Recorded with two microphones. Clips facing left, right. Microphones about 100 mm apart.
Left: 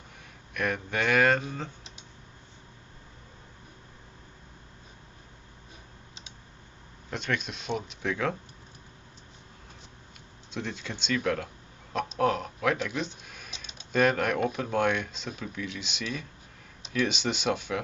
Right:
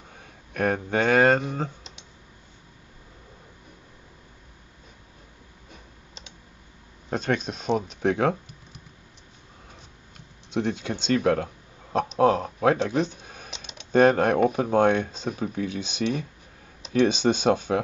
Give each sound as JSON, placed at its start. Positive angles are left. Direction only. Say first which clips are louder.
{"t": 0.2, "sound": "speech", "louder": "right 6 dB", "side_deg": -40}
{"t": 7.1, "sound": "speech", "louder": "right 6 dB", "side_deg": -40}
{"t": 10.5, "sound": "speech", "louder": "right 9 dB", "side_deg": -20}
{"t": 10.9, "sound": "speech", "louder": "right 5 dB", "side_deg": -45}
{"t": 12.9, "sound": "speech", "louder": "right 8 dB", "side_deg": -50}
{"t": 13.9, "sound": "speech", "louder": "right 7 dB", "side_deg": -35}
{"t": 14.4, "sound": "speech", "louder": "right 7 dB", "side_deg": -45}